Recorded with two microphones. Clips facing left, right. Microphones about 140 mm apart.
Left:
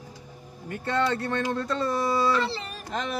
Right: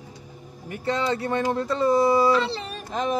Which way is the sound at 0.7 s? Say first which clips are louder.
Right 1 dB; 10° right (ahead or behind).